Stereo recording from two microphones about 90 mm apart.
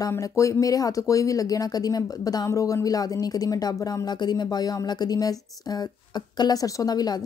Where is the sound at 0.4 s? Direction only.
35° left (ahead or behind).